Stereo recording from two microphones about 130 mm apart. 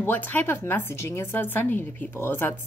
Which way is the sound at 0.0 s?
15° left (ahead or behind).